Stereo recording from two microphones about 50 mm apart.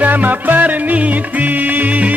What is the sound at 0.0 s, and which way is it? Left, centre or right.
Music, right.